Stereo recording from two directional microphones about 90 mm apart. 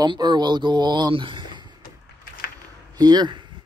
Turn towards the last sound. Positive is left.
turn(degrees=-55)  # may be behind; listen again after turning